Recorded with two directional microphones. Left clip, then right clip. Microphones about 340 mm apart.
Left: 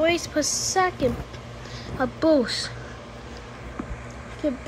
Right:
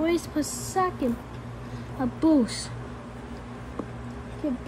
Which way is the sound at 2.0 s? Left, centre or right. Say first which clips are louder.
Left 3 dB; centre.